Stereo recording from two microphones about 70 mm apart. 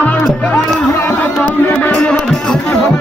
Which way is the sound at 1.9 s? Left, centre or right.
Centre.